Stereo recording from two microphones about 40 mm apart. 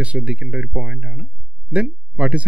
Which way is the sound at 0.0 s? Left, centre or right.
Right.